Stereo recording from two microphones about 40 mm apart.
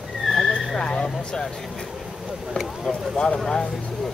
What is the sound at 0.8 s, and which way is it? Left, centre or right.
Speech, left.